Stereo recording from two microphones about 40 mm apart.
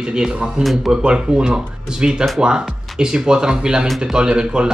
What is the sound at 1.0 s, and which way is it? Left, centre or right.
Speech, right.